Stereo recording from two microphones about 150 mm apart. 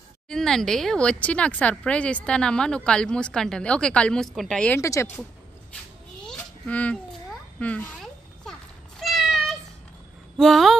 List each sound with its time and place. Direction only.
0.3 s speech: 5° left (ahead or behind)
4.7 s speech: 20° left (ahead or behind)
6.2 s a sound: 5° left (ahead or behind)
10.3 s speech: centre (ahead or behind)